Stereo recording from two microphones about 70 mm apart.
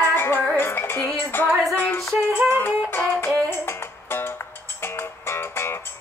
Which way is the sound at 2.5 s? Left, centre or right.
Left.